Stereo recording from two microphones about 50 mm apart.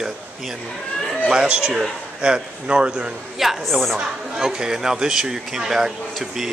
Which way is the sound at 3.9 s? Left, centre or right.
Centre.